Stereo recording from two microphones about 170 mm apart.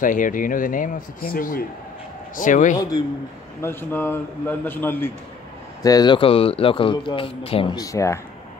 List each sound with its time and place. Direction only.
0.0 s speech: 50° left (ahead or behind)
3.6 s a man's voice: 10° left (ahead or behind)